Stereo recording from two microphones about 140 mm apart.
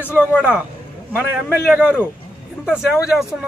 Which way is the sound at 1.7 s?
10° right (ahead or behind).